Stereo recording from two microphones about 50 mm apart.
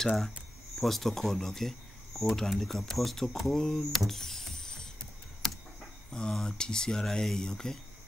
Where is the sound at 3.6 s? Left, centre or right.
Centre.